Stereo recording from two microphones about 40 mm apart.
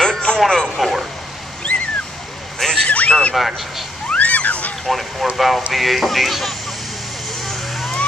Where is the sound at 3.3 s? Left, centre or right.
Centre.